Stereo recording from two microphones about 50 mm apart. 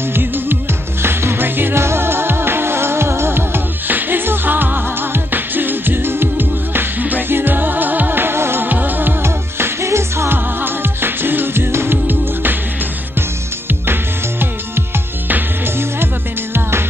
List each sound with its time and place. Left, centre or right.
0.1 s music: right
1.8 s music: right
8.6 s music: right
9.2 s music: right